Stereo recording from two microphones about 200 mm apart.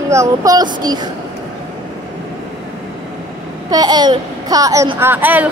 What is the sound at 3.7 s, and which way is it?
A woman's voice, 20° right (ahead or behind).